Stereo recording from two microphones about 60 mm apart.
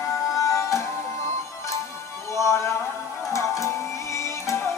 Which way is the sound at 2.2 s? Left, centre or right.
Left.